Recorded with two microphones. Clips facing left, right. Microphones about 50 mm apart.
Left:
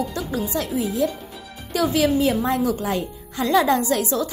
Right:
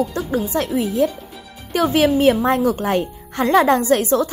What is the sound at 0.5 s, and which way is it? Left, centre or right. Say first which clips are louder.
Speech: right 4 dB; right.